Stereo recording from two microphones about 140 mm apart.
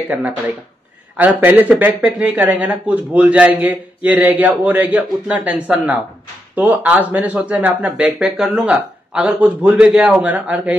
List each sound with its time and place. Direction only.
0.1 s speech: 10° right (ahead or behind)